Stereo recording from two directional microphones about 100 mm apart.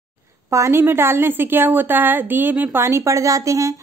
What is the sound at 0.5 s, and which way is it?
A woman's voice, 30° right (ahead or behind).